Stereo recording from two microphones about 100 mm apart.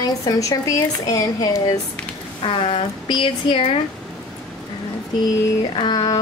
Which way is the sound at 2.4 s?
70° left (ahead or behind).